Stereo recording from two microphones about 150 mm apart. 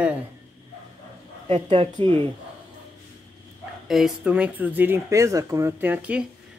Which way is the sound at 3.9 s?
5° right (ahead or behind).